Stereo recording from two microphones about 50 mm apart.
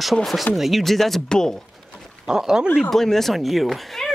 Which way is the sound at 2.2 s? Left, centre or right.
Centre.